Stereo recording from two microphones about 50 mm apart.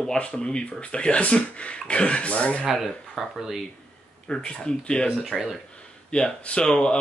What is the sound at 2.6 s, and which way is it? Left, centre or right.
Speech, centre.